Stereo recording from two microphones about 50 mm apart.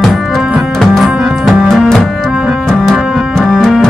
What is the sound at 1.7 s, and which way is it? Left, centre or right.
Music, centre.